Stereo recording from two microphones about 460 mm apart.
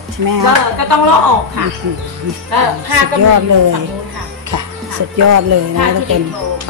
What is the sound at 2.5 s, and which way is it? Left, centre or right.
Speech, right.